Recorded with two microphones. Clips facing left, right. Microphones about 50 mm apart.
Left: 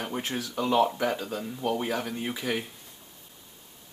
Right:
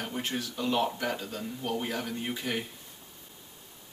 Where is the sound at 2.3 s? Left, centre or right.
Left.